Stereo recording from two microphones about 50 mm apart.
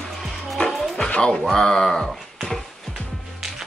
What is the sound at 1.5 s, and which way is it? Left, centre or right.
Speech, centre.